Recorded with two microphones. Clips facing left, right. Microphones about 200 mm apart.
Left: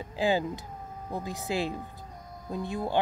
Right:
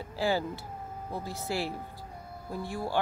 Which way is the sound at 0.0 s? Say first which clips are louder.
Left 2 dB; 15° left (ahead or behind).